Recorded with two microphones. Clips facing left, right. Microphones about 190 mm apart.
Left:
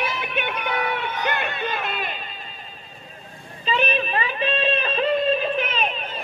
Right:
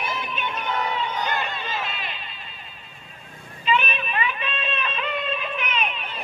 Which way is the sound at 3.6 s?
35° left (ahead or behind).